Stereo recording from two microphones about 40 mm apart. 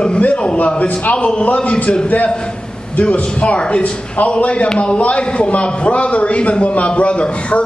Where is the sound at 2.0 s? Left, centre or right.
Left.